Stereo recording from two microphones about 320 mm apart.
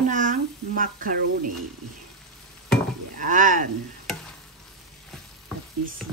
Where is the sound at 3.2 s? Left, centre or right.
Right.